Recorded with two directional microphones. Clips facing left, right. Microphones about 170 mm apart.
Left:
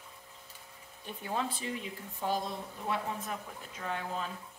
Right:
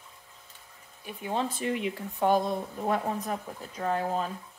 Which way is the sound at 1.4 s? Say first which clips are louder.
Right 8 dB; 55° right (ahead or behind).